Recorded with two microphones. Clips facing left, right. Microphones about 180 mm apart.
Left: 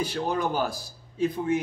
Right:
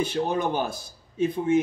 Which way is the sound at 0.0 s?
25° right (ahead or behind).